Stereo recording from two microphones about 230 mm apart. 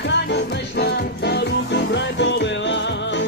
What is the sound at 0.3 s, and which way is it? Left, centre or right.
Music, left.